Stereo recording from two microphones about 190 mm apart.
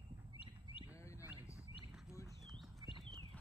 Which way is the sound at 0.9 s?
15° left (ahead or behind).